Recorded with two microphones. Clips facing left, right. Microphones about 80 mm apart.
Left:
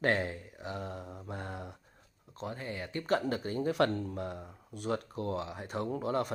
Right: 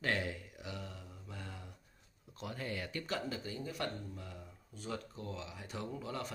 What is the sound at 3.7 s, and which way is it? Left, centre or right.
Speech, left.